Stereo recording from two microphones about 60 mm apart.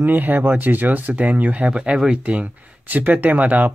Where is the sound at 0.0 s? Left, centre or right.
Right.